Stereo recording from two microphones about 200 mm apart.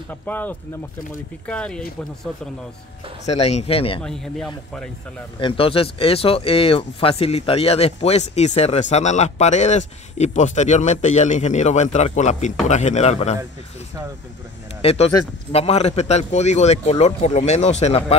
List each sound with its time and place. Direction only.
0.1 s a man's voice: 10° left (ahead or behind)
3.3 s speech: 35° left (ahead or behind)
4.0 s a man's voice: centre (ahead or behind)
5.4 s speech: 25° left (ahead or behind)
14.8 s speech: 30° left (ahead or behind)